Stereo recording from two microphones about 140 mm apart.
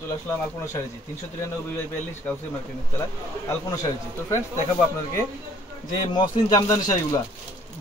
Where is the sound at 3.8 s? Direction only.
20° left (ahead or behind).